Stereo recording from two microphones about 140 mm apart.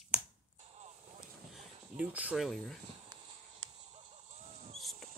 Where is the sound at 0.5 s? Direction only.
55° right (ahead or behind).